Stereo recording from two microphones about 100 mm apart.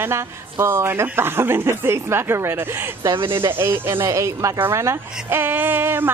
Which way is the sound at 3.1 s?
55° right (ahead or behind).